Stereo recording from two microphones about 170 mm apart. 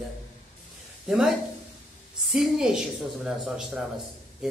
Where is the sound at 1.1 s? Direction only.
5° right (ahead or behind).